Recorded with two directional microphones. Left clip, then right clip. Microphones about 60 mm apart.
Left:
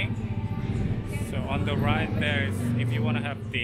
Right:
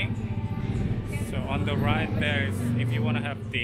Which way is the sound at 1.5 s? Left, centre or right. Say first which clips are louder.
Even; right.